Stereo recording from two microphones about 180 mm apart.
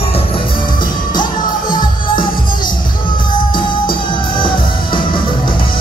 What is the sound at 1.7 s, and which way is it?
Music, 25° left (ahead or behind).